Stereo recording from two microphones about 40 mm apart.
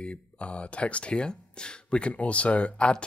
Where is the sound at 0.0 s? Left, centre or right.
Left.